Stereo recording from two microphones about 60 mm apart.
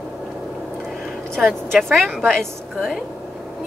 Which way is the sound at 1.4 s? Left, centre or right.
Centre.